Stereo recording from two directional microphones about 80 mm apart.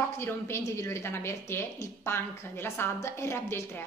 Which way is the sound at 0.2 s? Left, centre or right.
Left.